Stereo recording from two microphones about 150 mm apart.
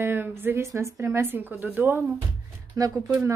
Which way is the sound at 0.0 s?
15° right (ahead or behind).